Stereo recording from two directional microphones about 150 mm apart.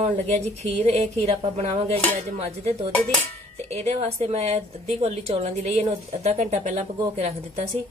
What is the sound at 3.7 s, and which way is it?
A woman's voice, 45° right (ahead or behind).